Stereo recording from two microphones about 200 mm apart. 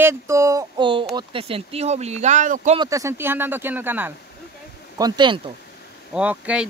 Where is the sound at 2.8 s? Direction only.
15° right (ahead or behind).